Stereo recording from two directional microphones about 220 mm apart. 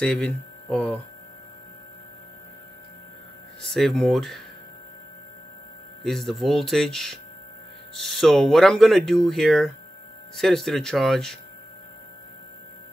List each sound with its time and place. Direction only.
0.0 s speech: 5° left (ahead or behind)
3.6 s speech: centre (ahead or behind)
6.0 s speech: centre (ahead or behind)